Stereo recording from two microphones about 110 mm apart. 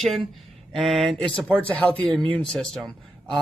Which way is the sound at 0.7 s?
Centre (ahead or behind).